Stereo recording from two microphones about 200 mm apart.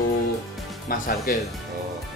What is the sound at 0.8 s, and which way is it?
Speech, 45° left (ahead or behind).